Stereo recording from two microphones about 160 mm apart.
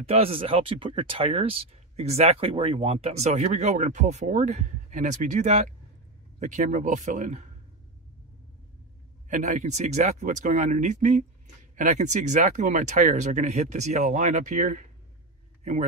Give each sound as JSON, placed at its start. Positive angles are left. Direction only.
{"t": 0.0, "sound": "speech", "side_deg": -40}
{"t": 9.3, "sound": "speech", "side_deg": -50}